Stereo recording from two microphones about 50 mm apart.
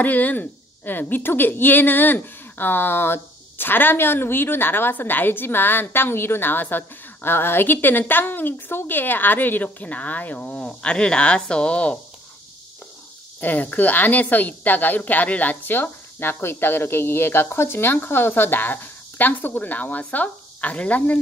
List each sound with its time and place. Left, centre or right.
0.0 s a woman's voice: left
13.4 s a woman's voice: left